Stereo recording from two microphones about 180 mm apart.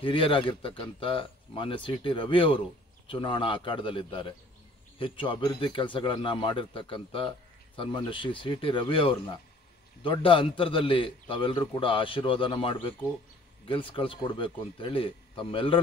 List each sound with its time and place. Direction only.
0.0 s speech: 30° left (ahead or behind)